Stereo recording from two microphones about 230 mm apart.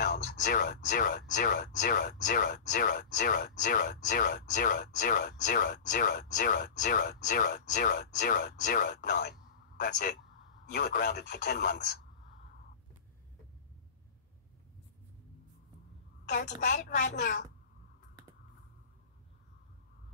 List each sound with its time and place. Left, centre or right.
0.0 s speech: left
16.3 s speech: left